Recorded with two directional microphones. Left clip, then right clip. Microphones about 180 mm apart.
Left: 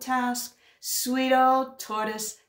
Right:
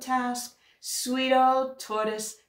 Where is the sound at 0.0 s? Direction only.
40° left (ahead or behind).